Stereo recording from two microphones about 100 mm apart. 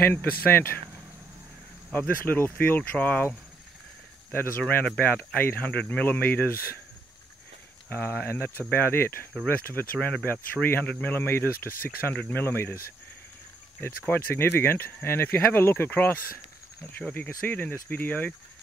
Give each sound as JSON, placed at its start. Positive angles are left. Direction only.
{"t": 0.1, "sound": "speech", "side_deg": 20}
{"t": 1.9, "sound": "speech", "side_deg": 15}
{"t": 7.9, "sound": "speech", "side_deg": 20}
{"t": 13.7, "sound": "speech", "side_deg": 20}
{"t": 17.5, "sound": "speech", "side_deg": 20}